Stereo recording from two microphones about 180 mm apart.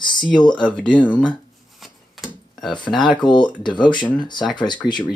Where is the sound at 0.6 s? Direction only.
5° left (ahead or behind).